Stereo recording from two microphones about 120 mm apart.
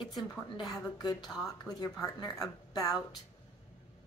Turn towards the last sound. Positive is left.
turn(degrees=30)  # may be behind; listen again after turning